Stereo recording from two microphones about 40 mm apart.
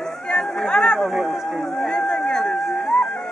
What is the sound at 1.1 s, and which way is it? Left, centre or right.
Speech, centre.